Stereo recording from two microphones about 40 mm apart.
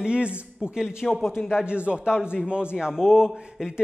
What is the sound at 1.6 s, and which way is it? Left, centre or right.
Speech, right.